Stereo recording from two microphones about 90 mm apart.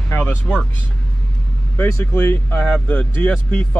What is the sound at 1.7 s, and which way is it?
Speech, 20° left (ahead or behind).